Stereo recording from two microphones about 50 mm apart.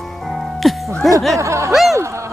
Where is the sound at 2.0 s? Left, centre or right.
Right.